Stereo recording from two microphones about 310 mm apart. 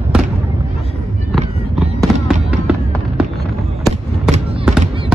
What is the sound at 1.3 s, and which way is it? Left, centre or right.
Fireworks, centre.